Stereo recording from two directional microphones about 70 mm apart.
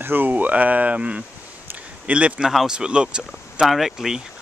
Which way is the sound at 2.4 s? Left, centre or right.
Centre.